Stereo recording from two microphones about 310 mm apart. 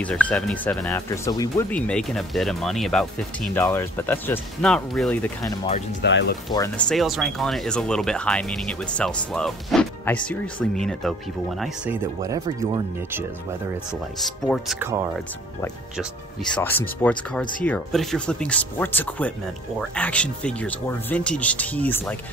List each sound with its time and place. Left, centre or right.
0.0 s speech: centre
6.0 s speech: left
6.5 s speech: centre
14.5 s speech: centre
16.0 s speech: centre